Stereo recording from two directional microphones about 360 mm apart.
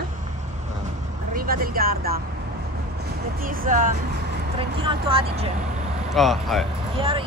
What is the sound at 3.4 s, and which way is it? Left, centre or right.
Speech, right.